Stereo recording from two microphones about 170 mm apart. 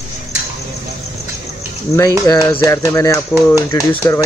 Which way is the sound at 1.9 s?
20° left (ahead or behind).